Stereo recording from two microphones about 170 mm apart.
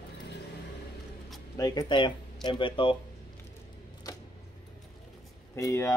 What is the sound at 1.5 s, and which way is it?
Speech, 25° left (ahead or behind).